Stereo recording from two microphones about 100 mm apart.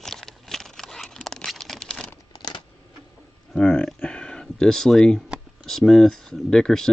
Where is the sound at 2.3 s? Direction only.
45° left (ahead or behind).